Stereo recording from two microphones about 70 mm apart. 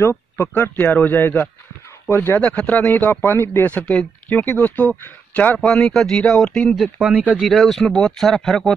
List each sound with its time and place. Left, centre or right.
0.0 s speech: left
3.6 s speech: centre
5.7 s speech: centre
6.7 s speech: centre